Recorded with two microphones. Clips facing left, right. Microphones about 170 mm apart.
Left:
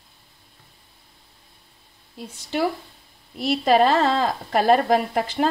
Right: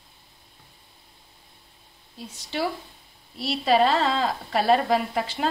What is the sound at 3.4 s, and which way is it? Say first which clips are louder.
A woman's voice: left 3 dB; 45° left (ahead or behind).